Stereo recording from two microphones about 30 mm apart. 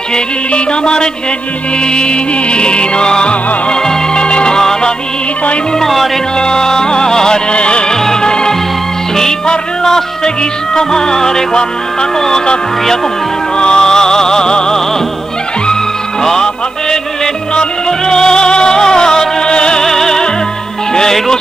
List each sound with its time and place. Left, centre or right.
0.5 s music: left
4.6 s music: left
5.8 s music: centre
6.3 s music: left
7.5 s music: left
7.9 s music: centre
8.3 s music: left
9.8 s music: centre
13.6 s music: left
17.6 s music: left
19.8 s music: centre